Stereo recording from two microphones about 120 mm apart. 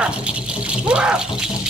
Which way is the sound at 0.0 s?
10° right (ahead or behind).